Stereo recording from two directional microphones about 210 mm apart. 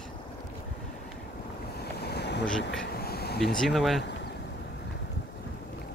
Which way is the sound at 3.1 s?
50° left (ahead or behind).